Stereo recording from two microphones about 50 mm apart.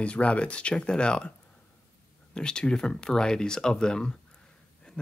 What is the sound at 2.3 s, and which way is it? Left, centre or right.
Speech, centre.